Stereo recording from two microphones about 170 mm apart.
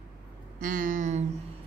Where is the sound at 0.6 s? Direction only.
55° right (ahead or behind).